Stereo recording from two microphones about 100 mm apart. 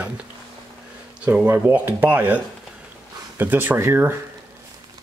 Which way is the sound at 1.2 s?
20° right (ahead or behind).